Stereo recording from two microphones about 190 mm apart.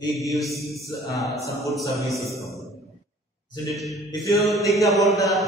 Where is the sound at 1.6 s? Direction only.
15° left (ahead or behind).